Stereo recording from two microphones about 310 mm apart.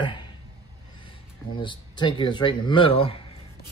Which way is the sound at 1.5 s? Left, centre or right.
Centre.